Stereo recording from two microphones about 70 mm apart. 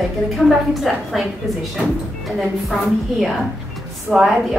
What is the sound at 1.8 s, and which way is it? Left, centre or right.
Speech, centre.